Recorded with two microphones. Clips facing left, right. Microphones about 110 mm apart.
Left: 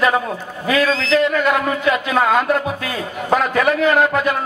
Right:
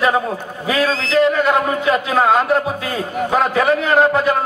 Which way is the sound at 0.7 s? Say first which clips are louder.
Left 1 dB; 40° right (ahead or behind).